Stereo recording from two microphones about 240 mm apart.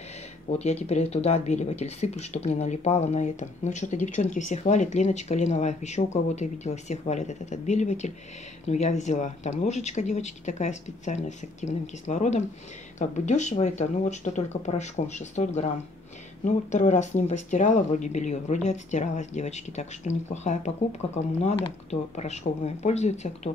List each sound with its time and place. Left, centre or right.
0.5 s speech: left